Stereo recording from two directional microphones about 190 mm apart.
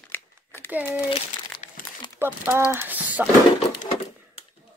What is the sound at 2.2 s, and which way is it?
Speech, 10° right (ahead or behind).